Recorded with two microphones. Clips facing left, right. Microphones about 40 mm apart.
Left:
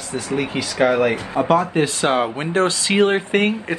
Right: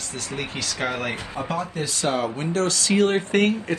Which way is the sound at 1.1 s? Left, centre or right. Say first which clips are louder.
Left 10 dB; left.